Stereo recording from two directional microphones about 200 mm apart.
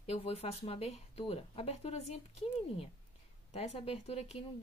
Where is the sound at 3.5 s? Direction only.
30° left (ahead or behind).